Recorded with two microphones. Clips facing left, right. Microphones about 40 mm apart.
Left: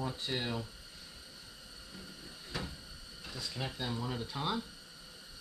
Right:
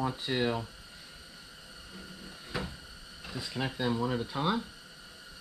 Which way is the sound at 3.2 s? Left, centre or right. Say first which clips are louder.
Right 5 dB; centre.